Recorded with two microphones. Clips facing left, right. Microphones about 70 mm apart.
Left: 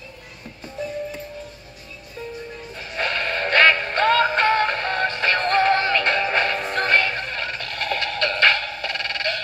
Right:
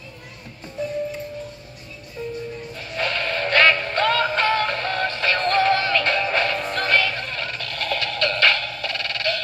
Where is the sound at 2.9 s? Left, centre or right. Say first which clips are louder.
Even; left.